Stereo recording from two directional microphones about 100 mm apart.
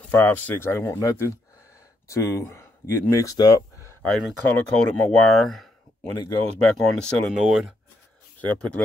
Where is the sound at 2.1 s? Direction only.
30° left (ahead or behind).